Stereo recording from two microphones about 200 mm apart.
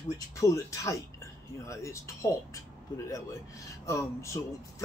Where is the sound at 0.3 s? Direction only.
15° left (ahead or behind).